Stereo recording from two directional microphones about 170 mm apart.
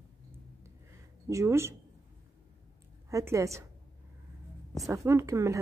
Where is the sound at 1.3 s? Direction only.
15° right (ahead or behind).